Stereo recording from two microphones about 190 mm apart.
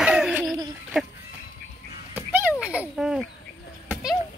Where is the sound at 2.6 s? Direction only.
5° right (ahead or behind).